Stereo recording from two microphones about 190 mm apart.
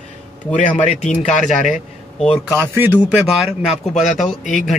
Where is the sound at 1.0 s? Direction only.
40° left (ahead or behind).